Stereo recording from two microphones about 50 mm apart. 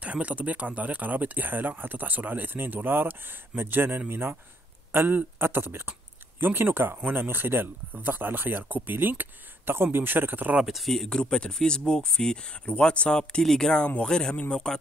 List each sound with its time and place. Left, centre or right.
0.0 s speech: right
10.6 s speech: centre
11.1 s speech: centre
13.2 s speech: centre